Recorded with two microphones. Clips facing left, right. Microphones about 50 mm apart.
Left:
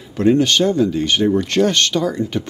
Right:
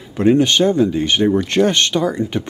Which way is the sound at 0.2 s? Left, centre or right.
Centre.